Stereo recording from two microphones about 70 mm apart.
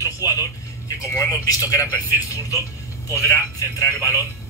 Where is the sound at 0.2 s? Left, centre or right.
Left.